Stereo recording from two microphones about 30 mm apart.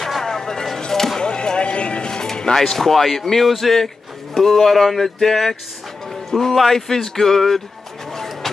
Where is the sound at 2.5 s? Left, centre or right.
Centre.